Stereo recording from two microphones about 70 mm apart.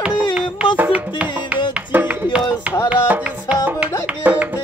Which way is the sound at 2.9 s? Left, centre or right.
Centre.